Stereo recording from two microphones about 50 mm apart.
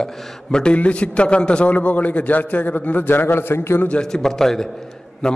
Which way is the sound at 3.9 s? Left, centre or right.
Centre.